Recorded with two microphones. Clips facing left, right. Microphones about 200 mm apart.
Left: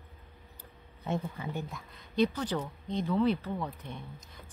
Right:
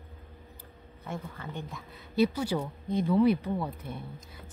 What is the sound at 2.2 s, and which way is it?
Speech, 10° right (ahead or behind).